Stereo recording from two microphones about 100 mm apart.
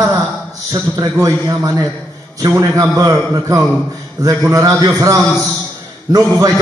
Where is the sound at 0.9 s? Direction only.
35° right (ahead or behind).